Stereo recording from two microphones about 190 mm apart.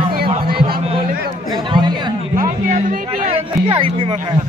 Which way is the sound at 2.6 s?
40° right (ahead or behind).